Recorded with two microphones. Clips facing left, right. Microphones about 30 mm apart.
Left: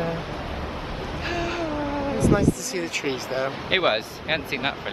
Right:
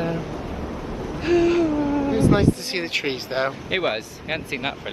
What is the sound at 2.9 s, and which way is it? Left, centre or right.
Speech, right.